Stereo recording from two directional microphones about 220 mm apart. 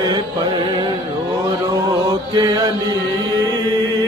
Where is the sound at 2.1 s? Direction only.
20° right (ahead or behind).